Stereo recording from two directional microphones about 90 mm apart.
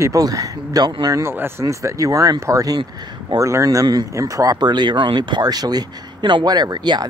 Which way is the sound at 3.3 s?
35° right (ahead or behind).